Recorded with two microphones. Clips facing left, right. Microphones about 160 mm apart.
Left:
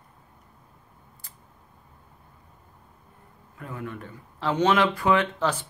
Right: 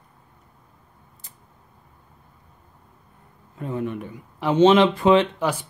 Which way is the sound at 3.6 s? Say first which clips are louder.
Right 8 dB; 25° right (ahead or behind).